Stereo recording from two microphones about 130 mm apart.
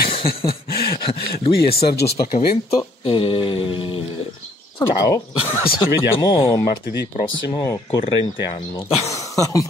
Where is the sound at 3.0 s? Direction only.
40° left (ahead or behind).